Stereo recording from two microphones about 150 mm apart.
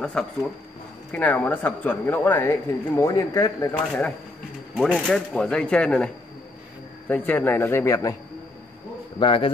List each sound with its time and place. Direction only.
0.0 s speech: 5° left (ahead or behind); by 3.7 s 20° left (ahead or behind)
3.7 s speech: 10° left (ahead or behind)
7.1 s speech: 10° left (ahead or behind)
9.2 s a man's voice: 35° left (ahead or behind)